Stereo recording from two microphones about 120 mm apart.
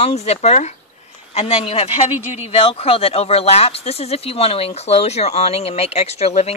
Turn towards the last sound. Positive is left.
turn(degrees=60)  # may be behind; listen again after turning